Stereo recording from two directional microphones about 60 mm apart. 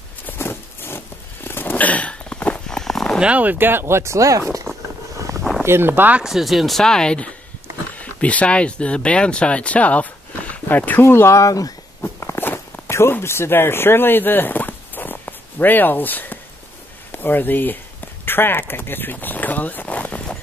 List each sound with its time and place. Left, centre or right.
0.3 s a sound: left; by 3.2 s centre
3.2 s speech: right
5.6 s speech: right
6.2 s speech: centre
7.9 s speech: left
11.0 s speech: left
12.0 s a sound: left
12.4 s walk: left
13.1 s speech: left
18.2 s a sound: left